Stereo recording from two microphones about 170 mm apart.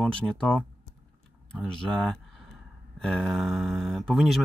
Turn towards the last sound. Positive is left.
turn(degrees=0)  # may be behind; listen again after turning